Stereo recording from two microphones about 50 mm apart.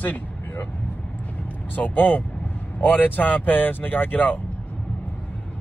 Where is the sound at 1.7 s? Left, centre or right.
Left.